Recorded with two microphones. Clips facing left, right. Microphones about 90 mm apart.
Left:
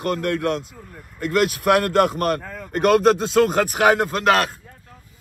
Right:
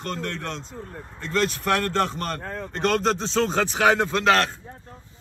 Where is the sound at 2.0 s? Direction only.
55° left (ahead or behind).